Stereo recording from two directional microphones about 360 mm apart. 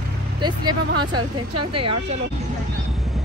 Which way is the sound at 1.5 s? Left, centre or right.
Right.